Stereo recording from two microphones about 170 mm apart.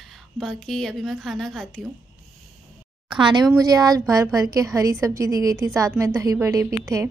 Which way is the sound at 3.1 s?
30° right (ahead or behind).